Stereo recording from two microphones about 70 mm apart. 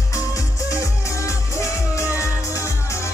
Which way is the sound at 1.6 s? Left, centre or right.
Left.